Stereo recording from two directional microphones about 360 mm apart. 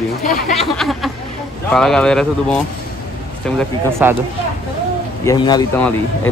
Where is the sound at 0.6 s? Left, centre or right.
Centre.